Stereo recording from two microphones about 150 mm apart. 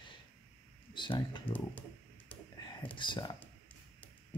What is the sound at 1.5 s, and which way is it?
Computer keyboard, 10° left (ahead or behind).